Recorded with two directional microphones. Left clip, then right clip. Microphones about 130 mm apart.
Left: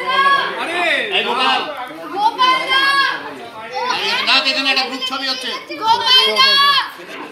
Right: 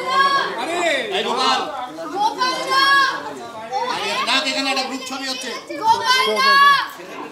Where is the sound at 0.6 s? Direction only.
30° right (ahead or behind).